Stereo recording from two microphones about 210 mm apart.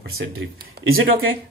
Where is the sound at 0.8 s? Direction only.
70° right (ahead or behind).